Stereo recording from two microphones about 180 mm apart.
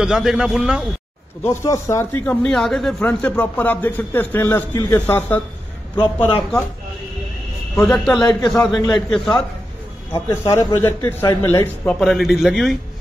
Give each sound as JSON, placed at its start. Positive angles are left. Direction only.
{"t": 0.0, "sound": "a man's voice", "side_deg": -5}
{"t": 1.4, "sound": "a man's voice", "side_deg": 15}
{"t": 2.4, "sound": "a man's voice", "side_deg": 5}
{"t": 5.9, "sound": "a man's voice", "side_deg": 25}
{"t": 7.8, "sound": "a man's voice", "side_deg": 5}
{"t": 8.2, "sound": "a man's voice", "side_deg": 20}
{"t": 9.1, "sound": "a man's voice", "side_deg": 5}
{"t": 10.1, "sound": "a man's voice", "side_deg": 15}